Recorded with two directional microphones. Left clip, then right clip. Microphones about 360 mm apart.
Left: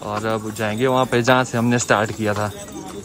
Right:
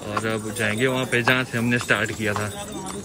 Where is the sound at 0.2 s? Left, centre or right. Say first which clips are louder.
Even; centre.